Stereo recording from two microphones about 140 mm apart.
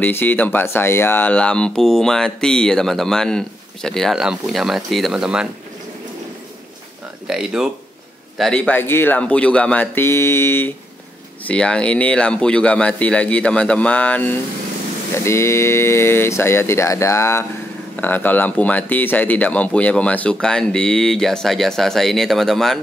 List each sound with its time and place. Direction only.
0.0 s speech: 15° left (ahead or behind); by 5.5 s 5° right (ahead or behind)
7.2 s speech: 5° right (ahead or behind); by 10.7 s 15° left (ahead or behind)
11.4 s speech: 5° left (ahead or behind)